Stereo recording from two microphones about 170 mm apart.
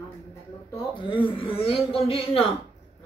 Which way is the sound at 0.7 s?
30° left (ahead or behind).